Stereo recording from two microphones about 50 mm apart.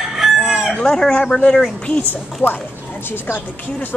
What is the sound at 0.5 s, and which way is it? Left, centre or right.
Chicken, centre.